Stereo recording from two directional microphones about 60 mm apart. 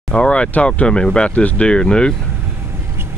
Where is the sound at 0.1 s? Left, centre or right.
Centre.